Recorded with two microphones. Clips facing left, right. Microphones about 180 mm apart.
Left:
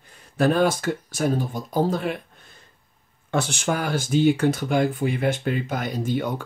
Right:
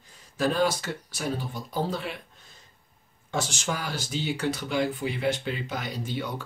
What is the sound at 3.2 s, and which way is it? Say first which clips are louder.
Speech: left 6 dB; 60° left (ahead or behind).